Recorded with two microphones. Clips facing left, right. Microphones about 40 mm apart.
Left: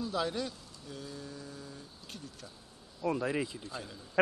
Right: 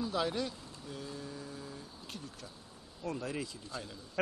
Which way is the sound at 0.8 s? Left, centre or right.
Centre.